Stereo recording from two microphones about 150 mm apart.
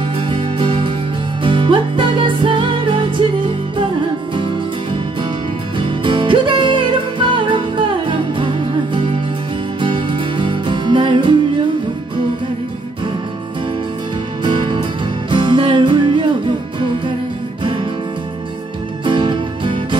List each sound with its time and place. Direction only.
0.3 s music: 35° right (ahead or behind)
5.8 s music: 35° right (ahead or behind)
14.4 s music: 35° right (ahead or behind)
19.0 s music: 35° right (ahead or behind)